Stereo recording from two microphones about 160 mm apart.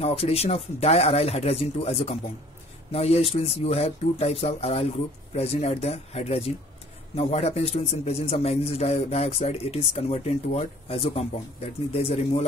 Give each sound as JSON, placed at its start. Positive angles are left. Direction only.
{"t": 0.0, "sound": "a man's voice", "side_deg": 40}